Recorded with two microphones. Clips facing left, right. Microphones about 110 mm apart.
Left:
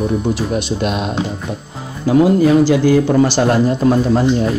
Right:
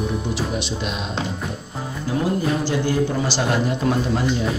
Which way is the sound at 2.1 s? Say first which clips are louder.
Left 11 dB; 90° left.